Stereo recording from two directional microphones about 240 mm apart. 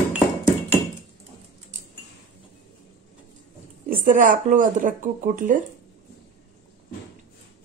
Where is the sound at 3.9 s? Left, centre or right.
Right.